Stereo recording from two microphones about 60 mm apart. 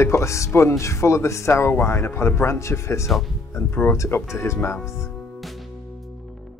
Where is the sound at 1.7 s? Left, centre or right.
Left.